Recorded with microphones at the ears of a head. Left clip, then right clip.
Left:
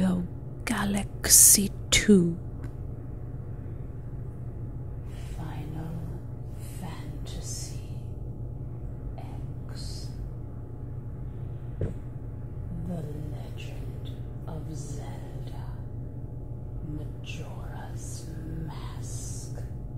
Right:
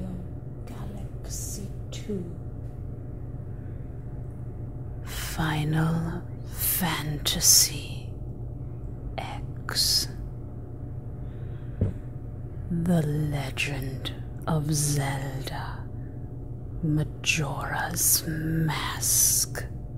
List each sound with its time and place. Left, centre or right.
0.0 s whispering: left
5.2 s speech: right
9.1 s whispering: right
12.6 s speech: right
16.8 s speech: right